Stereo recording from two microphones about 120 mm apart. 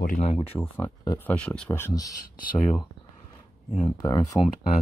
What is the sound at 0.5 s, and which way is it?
Speech, 15° left (ahead or behind).